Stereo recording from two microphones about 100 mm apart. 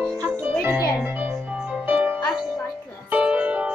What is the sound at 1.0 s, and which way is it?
Music, 15° right (ahead or behind).